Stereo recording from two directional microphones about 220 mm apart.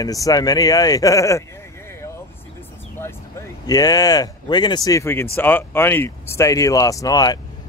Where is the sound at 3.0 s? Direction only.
10° left (ahead or behind).